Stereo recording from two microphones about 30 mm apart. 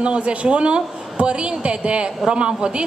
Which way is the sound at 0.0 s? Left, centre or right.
Right.